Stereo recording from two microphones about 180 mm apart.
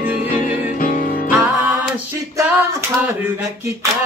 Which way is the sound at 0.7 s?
50° left (ahead or behind).